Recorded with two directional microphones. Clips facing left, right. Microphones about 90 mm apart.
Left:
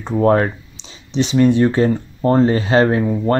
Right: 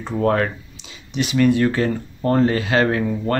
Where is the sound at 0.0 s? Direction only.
25° left (ahead or behind).